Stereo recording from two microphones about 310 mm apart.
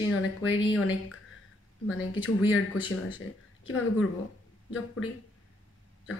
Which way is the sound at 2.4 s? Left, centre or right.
Centre.